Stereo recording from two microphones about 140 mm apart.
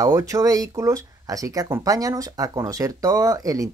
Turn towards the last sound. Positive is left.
turn(degrees=-25)  # may be behind; listen again after turning